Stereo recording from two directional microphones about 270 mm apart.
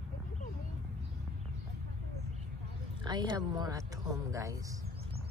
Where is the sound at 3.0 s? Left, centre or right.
Centre.